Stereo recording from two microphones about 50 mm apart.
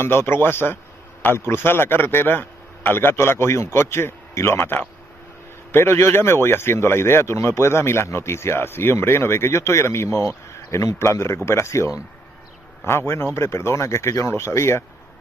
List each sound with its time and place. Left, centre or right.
0.0 s a man's voice: left
5.7 s speech: left
12.8 s speech: left